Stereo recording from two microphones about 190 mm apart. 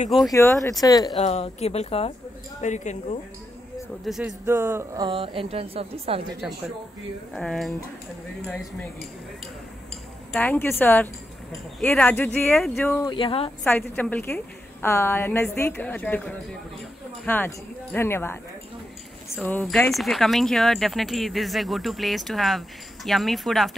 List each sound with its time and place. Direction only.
0.3 s a woman's voice: 15° left (ahead or behind)
1.1 s speech: 35° left (ahead or behind)
4.0 s speech: centre (ahead or behind)
4.5 s a woman's voice: 15° right (ahead or behind); by 6.3 s 30° right (ahead or behind)
7.3 s speech: centre (ahead or behind)
10.3 s a woman's voice: 10° left (ahead or behind)
13.0 s speech: 25° left (ahead or behind)
13.7 s a woman's voice: 10° left (ahead or behind)
19.4 s speech: 5° left (ahead or behind)